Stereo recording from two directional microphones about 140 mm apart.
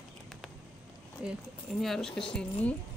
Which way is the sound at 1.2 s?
Centre (ahead or behind).